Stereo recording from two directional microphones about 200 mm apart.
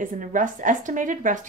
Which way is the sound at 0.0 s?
40° right (ahead or behind).